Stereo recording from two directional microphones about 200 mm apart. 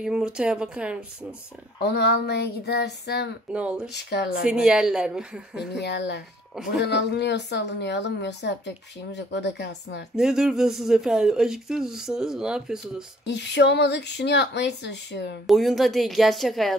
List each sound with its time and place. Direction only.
0.0 s speech: 5° right (ahead or behind)
1.8 s a woman's voice: 55° left (ahead or behind)
3.5 s speech: 5° right (ahead or behind)
3.9 s a woman's voice: 55° left (ahead or behind)
4.5 s speech: 5° right (ahead or behind)
5.7 s a woman's voice: 55° left (ahead or behind)
6.5 s speech: centre (ahead or behind)
6.8 s a woman's voice: 55° left (ahead or behind)
10.1 s speech: 5° right (ahead or behind)
13.3 s a woman's voice: 60° left (ahead or behind)
15.4 s speech: centre (ahead or behind)